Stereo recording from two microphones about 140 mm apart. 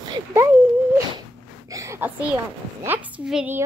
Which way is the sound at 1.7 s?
20° right (ahead or behind).